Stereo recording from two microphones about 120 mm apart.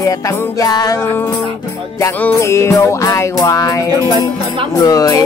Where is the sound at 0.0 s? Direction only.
30° left (ahead or behind).